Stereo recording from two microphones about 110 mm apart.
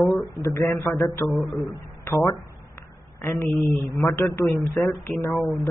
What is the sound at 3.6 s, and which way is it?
Speech, centre (ahead or behind).